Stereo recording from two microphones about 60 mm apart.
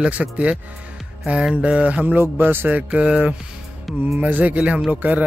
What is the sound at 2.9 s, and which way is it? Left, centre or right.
Speech, centre.